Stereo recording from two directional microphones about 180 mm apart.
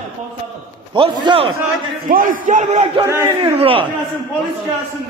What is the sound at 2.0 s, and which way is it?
Speech, 50° right (ahead or behind).